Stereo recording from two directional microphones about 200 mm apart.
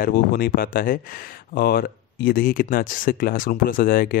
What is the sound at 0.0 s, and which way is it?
Speech, 50° left (ahead or behind).